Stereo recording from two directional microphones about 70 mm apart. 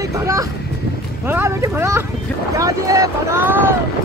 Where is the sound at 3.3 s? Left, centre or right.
Right.